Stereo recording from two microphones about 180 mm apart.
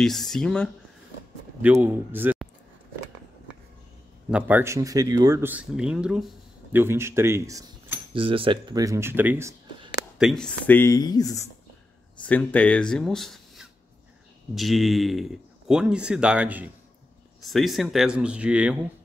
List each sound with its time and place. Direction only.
0.0 s speech: centre (ahead or behind)
1.6 s speech: 10° right (ahead or behind)
4.3 s speech: 5° right (ahead or behind)
8.1 s speech: 30° right (ahead or behind); by 9.6 s 15° right (ahead or behind)
10.1 s speech: centre (ahead or behind); by 11.4 s 20° left (ahead or behind)
12.2 s speech: 10° left (ahead or behind); by 18.8 s 5° right (ahead or behind)